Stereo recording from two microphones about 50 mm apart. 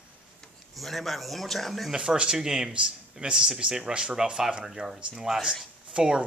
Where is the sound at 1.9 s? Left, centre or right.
Centre.